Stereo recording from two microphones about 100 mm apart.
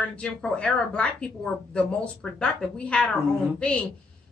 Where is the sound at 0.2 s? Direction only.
10° left (ahead or behind).